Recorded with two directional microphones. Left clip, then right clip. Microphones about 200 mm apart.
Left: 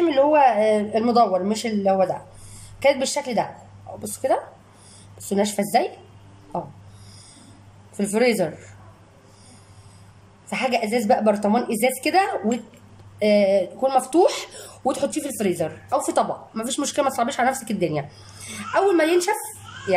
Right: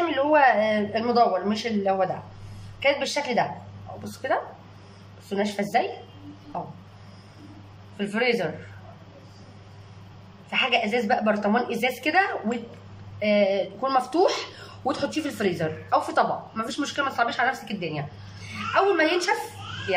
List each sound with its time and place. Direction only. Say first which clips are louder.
0.1 s a woman's voice: left 2 dB; 15° left (ahead or behind)
8.0 s a woman's voice: left 4 dB; 25° left (ahead or behind)
10.5 s a woman's voice: left 1 dB; 25° left (ahead or behind)